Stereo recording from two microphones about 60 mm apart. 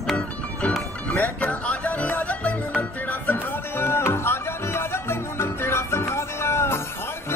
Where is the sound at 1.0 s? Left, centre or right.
Left.